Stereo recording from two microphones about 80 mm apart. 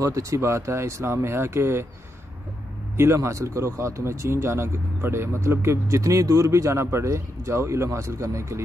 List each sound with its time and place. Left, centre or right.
0.0 s speech: right
3.0 s speech: right